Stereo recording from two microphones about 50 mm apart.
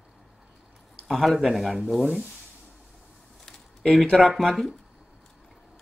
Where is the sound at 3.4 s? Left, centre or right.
Centre.